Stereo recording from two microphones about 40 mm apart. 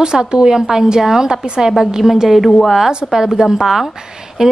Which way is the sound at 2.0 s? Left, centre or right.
Centre.